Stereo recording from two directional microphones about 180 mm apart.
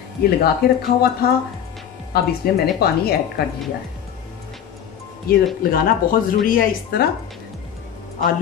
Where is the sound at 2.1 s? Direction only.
60° left (ahead or behind).